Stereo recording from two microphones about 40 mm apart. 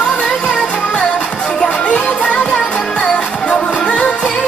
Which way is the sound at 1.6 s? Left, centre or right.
Left.